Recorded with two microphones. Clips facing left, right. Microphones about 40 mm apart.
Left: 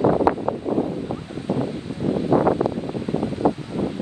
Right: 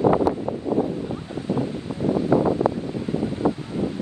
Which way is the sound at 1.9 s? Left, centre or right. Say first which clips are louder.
Right 2 dB; right.